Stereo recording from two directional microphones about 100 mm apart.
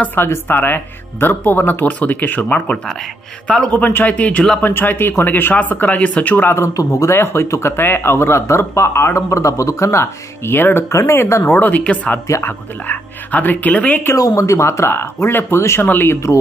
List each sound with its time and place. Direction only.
0.0 s speech: 20° left (ahead or behind)
14.1 s speech: 35° left (ahead or behind)